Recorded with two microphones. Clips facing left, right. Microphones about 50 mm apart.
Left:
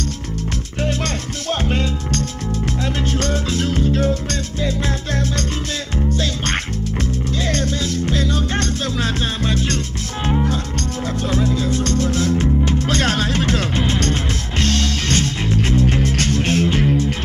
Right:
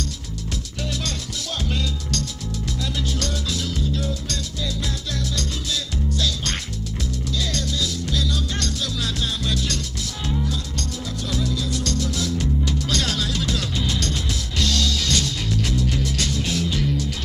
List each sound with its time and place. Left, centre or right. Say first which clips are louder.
0.8 s music: left 7 dB; left